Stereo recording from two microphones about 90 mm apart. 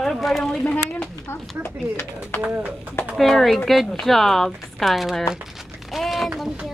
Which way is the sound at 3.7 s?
Centre (ahead or behind).